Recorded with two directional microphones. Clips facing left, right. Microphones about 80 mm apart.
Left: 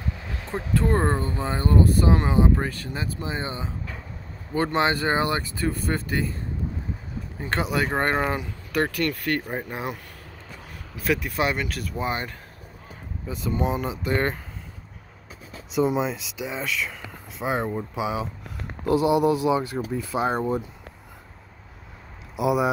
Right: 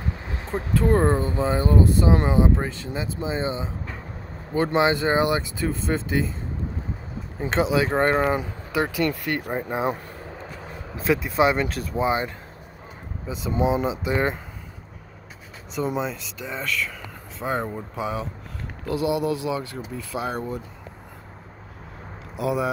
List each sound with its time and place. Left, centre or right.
0.3 s speech: right
7.3 s speech: centre
8.7 s speech: centre
13.3 s speech: centre
15.7 s speech: centre
18.9 s speech: left
22.4 s speech: centre